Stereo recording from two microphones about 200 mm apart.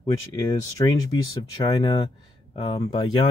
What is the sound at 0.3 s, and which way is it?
Speech, 20° left (ahead or behind).